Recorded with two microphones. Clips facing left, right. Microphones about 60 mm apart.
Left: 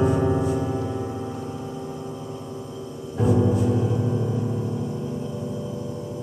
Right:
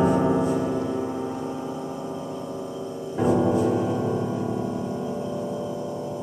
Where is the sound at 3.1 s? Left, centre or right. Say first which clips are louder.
Right 1 dB; right.